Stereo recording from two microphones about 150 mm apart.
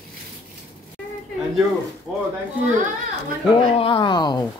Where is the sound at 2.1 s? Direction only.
5° left (ahead or behind).